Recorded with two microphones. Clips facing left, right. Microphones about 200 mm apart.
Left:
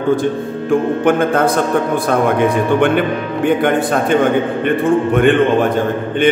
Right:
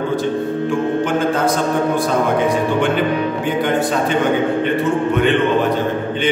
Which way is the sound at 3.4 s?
55° left (ahead or behind).